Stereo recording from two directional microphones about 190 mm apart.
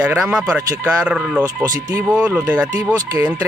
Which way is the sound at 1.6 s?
20° right (ahead or behind).